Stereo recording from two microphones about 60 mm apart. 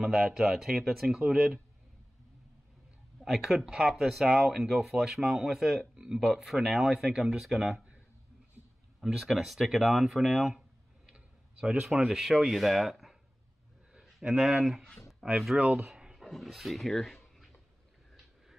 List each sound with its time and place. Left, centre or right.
0.0 s speech: centre
3.2 s speech: centre
9.0 s speech: centre
11.1 s clicking: centre
12.1 s speech: centre
14.4 s speech: centre
15.5 s speech: centre
15.8 s a sound: centre
16.3 s speech: centre